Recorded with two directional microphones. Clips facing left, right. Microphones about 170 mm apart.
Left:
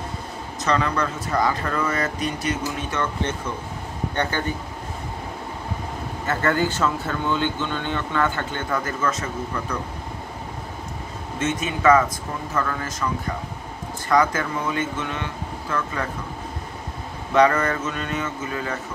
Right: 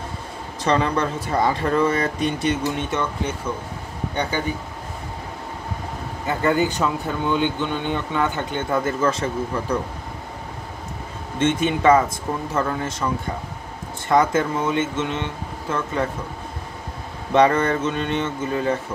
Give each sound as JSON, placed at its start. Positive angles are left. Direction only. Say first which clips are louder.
{"t": 0.7, "sound": "speech", "louder": "right 2 dB", "side_deg": -25}
{"t": 4.1, "sound": "speech", "louder": "right 1 dB", "side_deg": -10}
{"t": 6.2, "sound": "speech", "louder": "right 2 dB", "side_deg": -15}
{"t": 11.3, "sound": "speech", "louder": "right 5 dB", "side_deg": -30}
{"t": 17.3, "sound": "speech", "louder": "right 2 dB", "side_deg": -25}